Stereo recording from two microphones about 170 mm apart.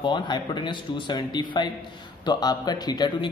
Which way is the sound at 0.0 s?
25° left (ahead or behind).